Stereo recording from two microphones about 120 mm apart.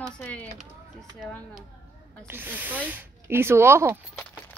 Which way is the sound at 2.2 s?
15° right (ahead or behind).